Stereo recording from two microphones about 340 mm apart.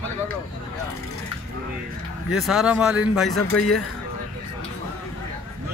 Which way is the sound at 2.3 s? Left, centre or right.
Centre.